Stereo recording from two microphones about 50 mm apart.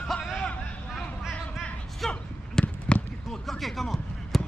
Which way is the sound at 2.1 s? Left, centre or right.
Left.